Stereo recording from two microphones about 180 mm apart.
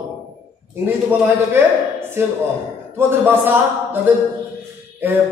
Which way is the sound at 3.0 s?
15° right (ahead or behind).